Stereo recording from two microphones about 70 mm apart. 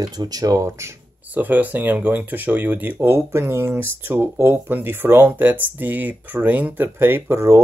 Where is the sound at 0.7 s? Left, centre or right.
Right.